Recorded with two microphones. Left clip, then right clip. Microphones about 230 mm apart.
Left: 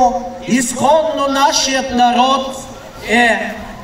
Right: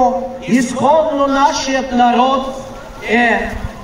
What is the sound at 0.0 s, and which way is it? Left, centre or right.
Speech, left.